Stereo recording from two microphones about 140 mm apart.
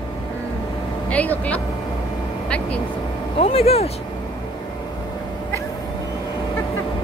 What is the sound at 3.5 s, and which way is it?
Speech, 45° left (ahead or behind).